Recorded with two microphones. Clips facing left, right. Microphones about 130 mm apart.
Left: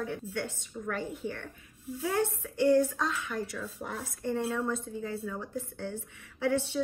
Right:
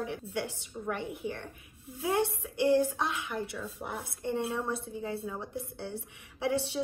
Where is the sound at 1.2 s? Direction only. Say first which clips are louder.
Right 3 dB; 30° left (ahead or behind).